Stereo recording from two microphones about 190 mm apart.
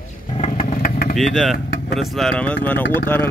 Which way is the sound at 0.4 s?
35° left (ahead or behind).